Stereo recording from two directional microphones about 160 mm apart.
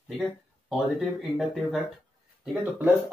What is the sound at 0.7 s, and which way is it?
Speech, centre (ahead or behind).